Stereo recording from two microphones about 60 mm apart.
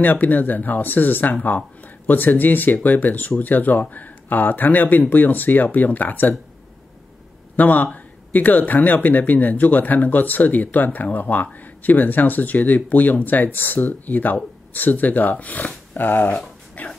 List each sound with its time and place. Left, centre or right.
0.0 s speech: left
7.5 s speech: left